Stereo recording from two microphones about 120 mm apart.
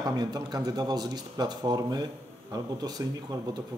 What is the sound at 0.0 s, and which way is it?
Speech, 35° right (ahead or behind).